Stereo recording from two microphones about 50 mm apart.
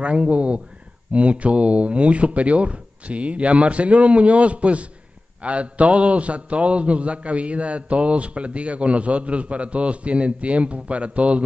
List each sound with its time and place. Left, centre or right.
0.0 s a man's voice: right